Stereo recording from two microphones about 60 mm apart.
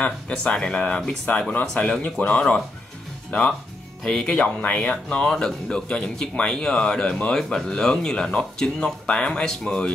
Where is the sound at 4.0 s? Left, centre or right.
Centre.